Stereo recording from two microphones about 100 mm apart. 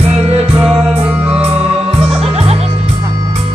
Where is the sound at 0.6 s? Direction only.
15° right (ahead or behind).